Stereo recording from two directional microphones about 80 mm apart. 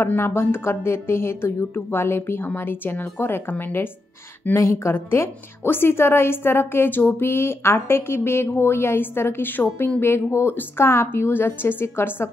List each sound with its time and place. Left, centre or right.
0.0 s a woman's voice: left